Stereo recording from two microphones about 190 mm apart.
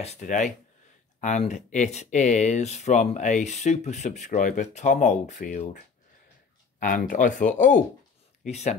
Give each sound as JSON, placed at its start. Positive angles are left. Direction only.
{"t": 0.0, "sound": "speech", "side_deg": 35}
{"t": 6.8, "sound": "speech", "side_deg": 50}